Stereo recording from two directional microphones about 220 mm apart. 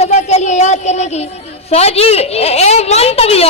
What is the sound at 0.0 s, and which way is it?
A woman's voice, 30° left (ahead or behind).